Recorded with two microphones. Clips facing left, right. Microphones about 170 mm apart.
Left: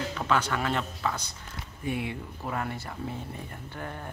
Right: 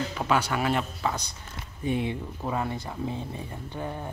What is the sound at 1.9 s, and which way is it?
Speech, 25° right (ahead or behind).